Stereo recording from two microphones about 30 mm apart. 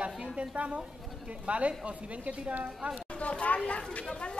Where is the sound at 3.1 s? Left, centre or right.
Left.